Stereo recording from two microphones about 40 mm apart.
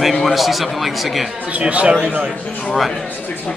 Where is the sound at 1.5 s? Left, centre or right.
Right.